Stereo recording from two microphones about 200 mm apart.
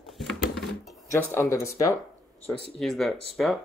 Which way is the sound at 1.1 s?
15° left (ahead or behind).